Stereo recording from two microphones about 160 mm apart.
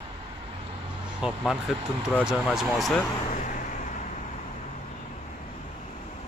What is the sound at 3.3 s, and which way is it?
Vehicle, 55° left (ahead or behind).